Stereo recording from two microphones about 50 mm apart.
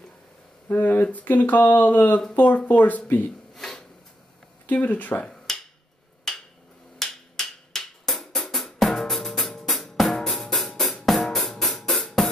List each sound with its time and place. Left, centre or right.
0.7 s speech: left
3.5 s a sound: centre
4.6 s speech: left
5.2 s finger snapping: centre
7.0 s music: centre